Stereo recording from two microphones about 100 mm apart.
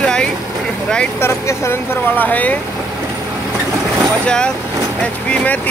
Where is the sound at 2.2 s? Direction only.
15° left (ahead or behind).